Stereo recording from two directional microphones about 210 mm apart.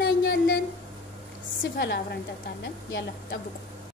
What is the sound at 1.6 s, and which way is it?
A woman's voice, 55° left (ahead or behind).